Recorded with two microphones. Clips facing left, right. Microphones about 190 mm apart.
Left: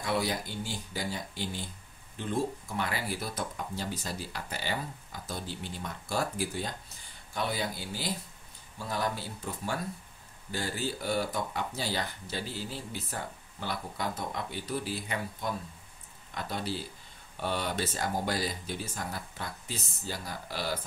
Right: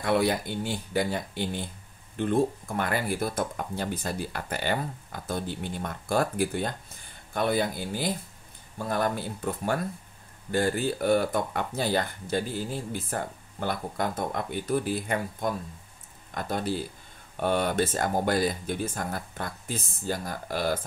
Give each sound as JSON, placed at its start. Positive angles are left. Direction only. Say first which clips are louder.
{"t": 0.0, "sound": "speech", "louder": "right 6 dB", "side_deg": -60}